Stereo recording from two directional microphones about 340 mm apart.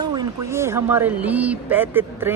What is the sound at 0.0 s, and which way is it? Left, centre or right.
Speech, centre.